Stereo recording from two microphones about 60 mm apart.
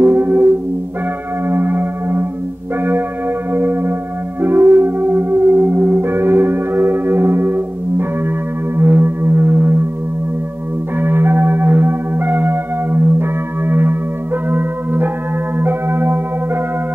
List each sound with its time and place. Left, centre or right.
0.0 s music: right
1.5 s singing bowl: right
3.5 s singing bowl: right
4.4 s music: right
8.7 s singing bowl: right
11.0 s singing bowl: right
14.5 s church bell: right
15.5 s bell: right